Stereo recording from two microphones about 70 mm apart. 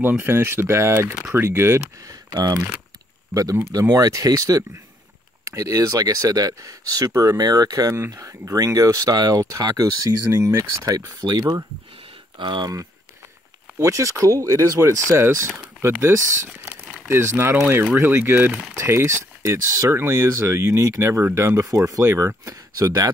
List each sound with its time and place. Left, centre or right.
0.0 s speech: right
2.3 s speech: right
3.9 s speech: right
8.1 s speech: right
11.1 s speech: right
12.4 s speech: right
13.7 s speech: right
18.8 s speech: right